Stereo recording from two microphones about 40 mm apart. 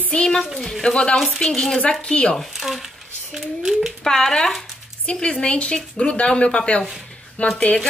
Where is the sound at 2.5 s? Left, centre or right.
Centre.